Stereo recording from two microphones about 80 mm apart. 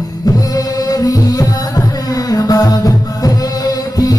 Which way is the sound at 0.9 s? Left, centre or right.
Left.